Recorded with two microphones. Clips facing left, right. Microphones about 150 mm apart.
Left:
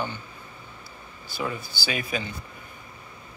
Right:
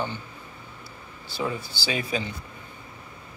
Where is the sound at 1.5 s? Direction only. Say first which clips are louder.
Right 1 dB; 30° right (ahead or behind).